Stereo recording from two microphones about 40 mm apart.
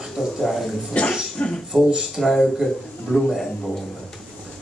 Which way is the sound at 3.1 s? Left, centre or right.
Left.